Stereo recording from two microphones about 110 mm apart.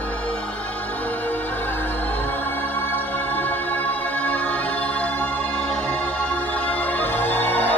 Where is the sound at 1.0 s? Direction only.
15° left (ahead or behind).